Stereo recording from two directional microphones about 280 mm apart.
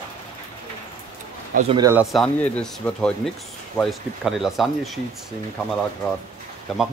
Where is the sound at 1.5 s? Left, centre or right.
Centre.